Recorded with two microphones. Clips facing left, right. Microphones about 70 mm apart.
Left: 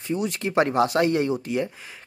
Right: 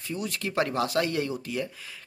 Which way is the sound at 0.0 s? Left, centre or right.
Left.